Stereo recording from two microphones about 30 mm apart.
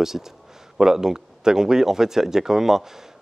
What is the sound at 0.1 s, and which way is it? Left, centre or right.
Speech, centre.